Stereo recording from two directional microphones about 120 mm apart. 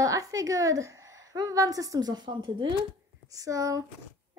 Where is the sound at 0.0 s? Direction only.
30° right (ahead or behind).